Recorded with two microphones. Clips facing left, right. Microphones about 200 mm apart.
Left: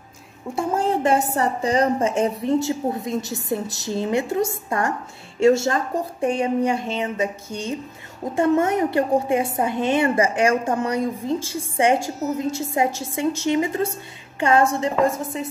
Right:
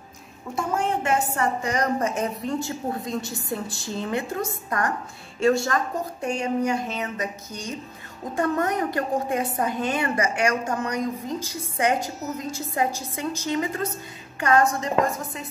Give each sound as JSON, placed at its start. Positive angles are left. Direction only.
{"t": 0.6, "sound": "a woman's voice", "side_deg": 30}